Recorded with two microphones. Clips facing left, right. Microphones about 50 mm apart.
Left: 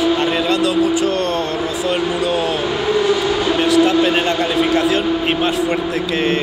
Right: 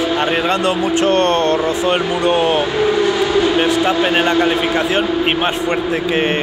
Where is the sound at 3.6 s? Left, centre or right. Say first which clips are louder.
Left 1 dB; right.